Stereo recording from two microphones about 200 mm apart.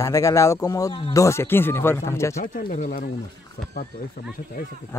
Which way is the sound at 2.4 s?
40° left (ahead or behind).